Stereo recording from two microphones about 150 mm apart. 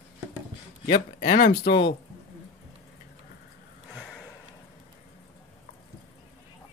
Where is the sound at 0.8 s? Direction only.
70° left (ahead or behind); by 1.9 s 90° left.